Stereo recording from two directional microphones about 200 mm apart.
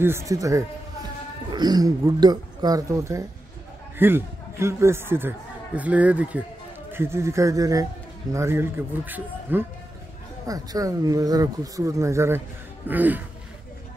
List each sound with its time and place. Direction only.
0.0 s speech: 15° right (ahead or behind)